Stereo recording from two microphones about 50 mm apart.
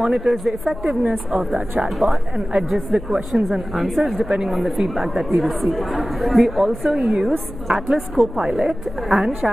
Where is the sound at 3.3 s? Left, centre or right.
Centre.